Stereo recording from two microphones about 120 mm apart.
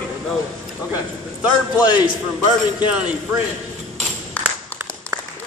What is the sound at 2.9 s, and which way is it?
Speech, 10° right (ahead or behind).